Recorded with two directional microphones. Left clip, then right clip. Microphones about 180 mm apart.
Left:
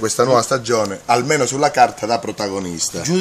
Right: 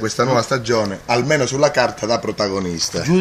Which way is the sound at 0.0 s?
45° left (ahead or behind).